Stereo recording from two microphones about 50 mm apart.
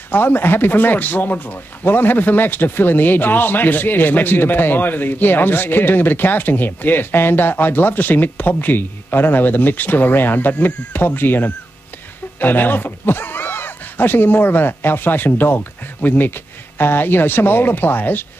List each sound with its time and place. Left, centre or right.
0.1 s speech: left